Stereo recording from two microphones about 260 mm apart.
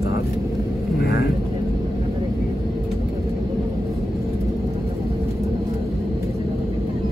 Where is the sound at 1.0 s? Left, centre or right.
Left.